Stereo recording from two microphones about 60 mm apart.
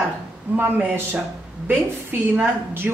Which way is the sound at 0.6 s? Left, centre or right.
Right.